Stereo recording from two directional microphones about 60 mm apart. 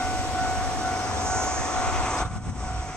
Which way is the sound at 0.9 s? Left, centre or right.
Centre.